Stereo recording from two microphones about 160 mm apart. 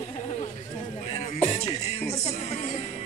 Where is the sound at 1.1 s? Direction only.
45° left (ahead or behind).